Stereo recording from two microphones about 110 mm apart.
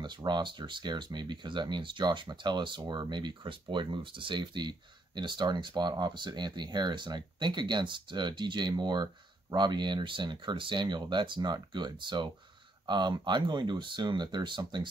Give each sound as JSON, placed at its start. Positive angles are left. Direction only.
{"t": 0.0, "sound": "speech", "side_deg": -45}